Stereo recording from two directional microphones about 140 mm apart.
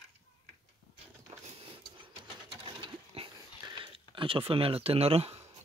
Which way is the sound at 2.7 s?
40° right (ahead or behind).